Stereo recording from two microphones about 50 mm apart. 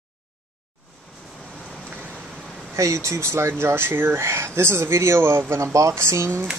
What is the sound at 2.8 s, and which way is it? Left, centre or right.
Speech, right.